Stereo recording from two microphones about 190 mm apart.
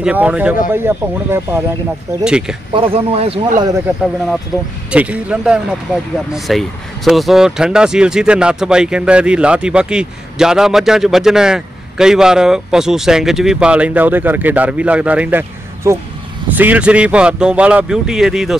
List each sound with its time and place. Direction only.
0.0 s speech: 5° right (ahead or behind)
2.7 s speech: 30° right (ahead or behind)
3.6 s speech: 15° right (ahead or behind)
4.9 s speech: 5° right (ahead or behind)